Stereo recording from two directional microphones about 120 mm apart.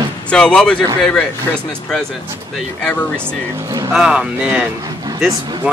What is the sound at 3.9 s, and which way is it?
Speech, 5° right (ahead or behind).